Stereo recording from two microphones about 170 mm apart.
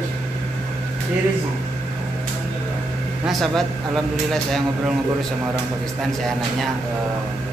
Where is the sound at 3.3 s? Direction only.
Centre (ahead or behind).